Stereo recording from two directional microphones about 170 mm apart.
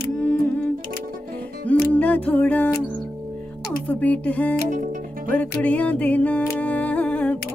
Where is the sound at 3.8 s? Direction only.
10° left (ahead or behind).